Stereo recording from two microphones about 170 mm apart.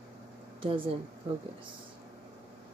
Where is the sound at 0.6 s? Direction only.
30° right (ahead or behind).